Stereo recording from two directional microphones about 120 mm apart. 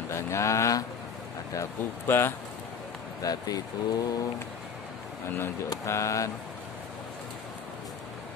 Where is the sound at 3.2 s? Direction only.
30° left (ahead or behind).